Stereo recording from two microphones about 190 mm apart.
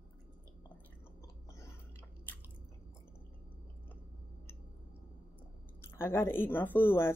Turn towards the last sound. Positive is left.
turn(degrees=10)  # may be behind; listen again after turning